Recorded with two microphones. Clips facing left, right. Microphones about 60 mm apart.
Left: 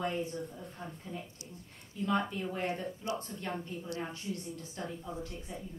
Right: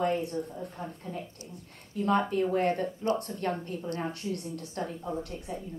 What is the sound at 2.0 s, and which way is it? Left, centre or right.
A woman's voice, right.